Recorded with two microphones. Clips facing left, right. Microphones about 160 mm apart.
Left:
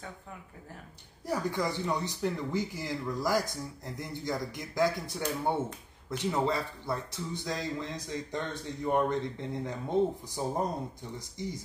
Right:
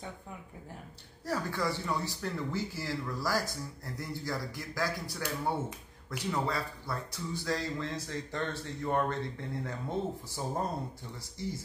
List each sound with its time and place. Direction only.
1.2 s speech: 15° left (ahead or behind)